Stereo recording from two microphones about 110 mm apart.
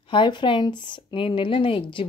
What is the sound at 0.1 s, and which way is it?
A woman's voice, 50° left (ahead or behind).